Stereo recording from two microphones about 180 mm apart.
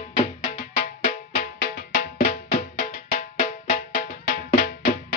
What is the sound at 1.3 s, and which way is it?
Music, 60° left (ahead or behind).